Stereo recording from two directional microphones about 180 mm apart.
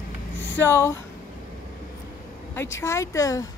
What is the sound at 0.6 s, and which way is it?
Speech, 15° left (ahead or behind).